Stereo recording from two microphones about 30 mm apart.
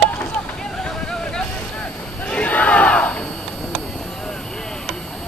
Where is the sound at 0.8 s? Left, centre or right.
Left.